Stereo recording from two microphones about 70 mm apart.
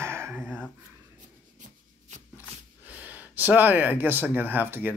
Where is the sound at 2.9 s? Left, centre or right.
Right.